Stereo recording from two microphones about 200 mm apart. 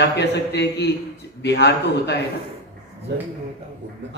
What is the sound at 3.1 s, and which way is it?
Speech, 55° right (ahead or behind).